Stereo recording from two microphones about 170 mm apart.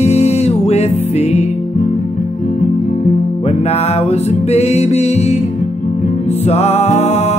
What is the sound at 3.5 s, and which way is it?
Music, 40° left (ahead or behind).